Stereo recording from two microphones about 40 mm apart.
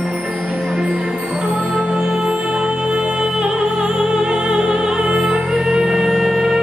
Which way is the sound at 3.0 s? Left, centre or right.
Right.